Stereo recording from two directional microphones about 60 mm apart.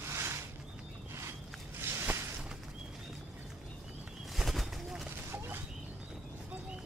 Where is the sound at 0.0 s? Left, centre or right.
Right.